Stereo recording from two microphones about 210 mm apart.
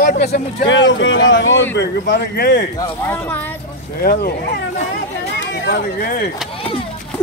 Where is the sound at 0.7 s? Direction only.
60° left (ahead or behind).